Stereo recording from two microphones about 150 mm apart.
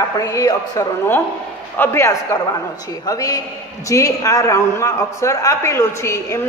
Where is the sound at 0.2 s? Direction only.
25° left (ahead or behind).